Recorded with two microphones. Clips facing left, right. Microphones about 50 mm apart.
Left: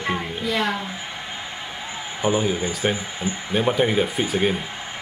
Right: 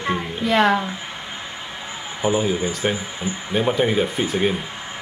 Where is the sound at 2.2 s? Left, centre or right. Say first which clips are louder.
Right 1 dB; centre.